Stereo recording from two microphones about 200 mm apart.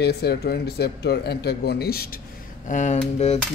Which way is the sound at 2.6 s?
40° left (ahead or behind).